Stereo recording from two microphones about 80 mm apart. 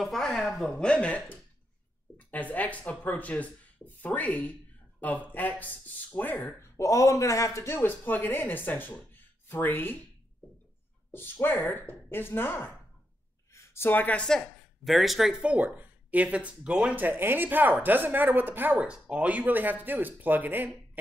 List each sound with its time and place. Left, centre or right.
0.0 s speech: centre; by 6.5 s left
6.8 s speech: left
11.1 s speech: left
13.5 s a sound: left
13.8 s speech: left
14.2 s speech: centre
15.4 s speech: centre
17.0 s speech: right
18.9 s speech: centre